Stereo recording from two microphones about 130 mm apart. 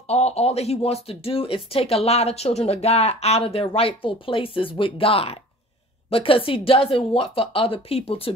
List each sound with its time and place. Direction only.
0.0 s speech: 55° left (ahead or behind)